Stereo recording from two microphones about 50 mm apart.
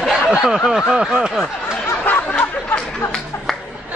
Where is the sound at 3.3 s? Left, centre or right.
Left.